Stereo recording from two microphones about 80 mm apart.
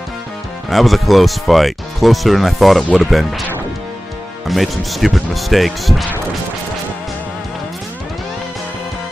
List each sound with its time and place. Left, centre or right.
0.7 s speech: centre
4.5 s speech: centre